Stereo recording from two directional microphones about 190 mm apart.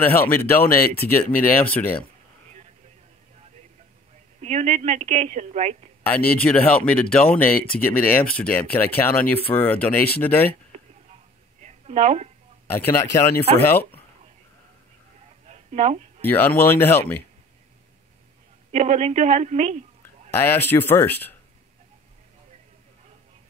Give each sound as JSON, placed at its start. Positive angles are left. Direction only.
{"t": 0.0, "sound": "speech", "side_deg": 10}
{"t": 4.4, "sound": "a woman's voice", "side_deg": -35}
{"t": 6.0, "sound": "speech", "side_deg": 10}
{"t": 11.6, "sound": "a sound", "side_deg": -35}
{"t": 13.4, "sound": "speech", "side_deg": 10}
{"t": 15.4, "sound": "a sound", "side_deg": -35}
{"t": 16.2, "sound": "speech", "side_deg": 10}
{"t": 18.7, "sound": "a woman's voice", "side_deg": -35}
{"t": 20.3, "sound": "speech", "side_deg": 10}